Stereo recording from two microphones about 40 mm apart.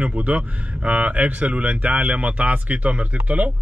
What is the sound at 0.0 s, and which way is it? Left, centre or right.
Speech, right.